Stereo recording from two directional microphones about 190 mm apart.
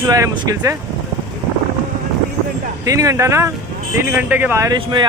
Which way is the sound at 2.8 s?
15° right (ahead or behind).